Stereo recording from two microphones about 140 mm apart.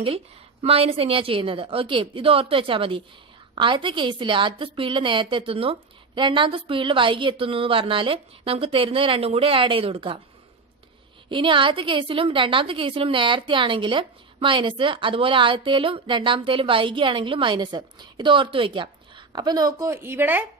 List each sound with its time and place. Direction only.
0.0 s a woman's voice: 45° right (ahead or behind)
11.2 s a woman's voice: 35° right (ahead or behind); by 20.4 s 15° right (ahead or behind)